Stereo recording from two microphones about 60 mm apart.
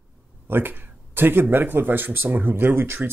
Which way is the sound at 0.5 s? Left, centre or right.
Right.